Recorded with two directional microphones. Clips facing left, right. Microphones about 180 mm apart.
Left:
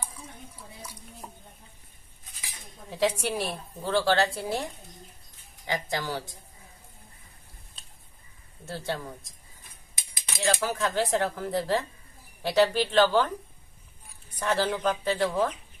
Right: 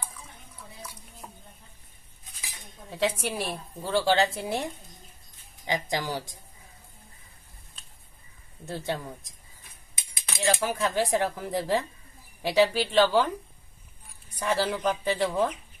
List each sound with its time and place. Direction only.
2.9 s a woman's voice: centre (ahead or behind)
4.0 s speech: 15° right (ahead or behind)
5.7 s speech: 15° right (ahead or behind)
8.6 s speech: 15° right (ahead or behind)
10.4 s speech: 15° right (ahead or behind)
14.4 s speech: 10° right (ahead or behind)